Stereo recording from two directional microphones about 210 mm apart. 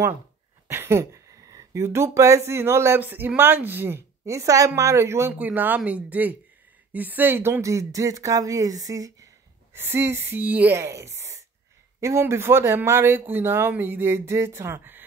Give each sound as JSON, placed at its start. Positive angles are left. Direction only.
{"t": 0.7, "sound": "speech", "side_deg": -15}